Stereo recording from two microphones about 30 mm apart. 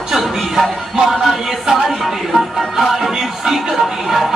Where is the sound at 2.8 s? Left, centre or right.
Centre.